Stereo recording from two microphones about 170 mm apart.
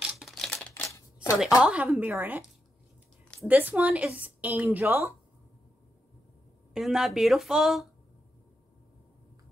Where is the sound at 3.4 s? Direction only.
10° right (ahead or behind).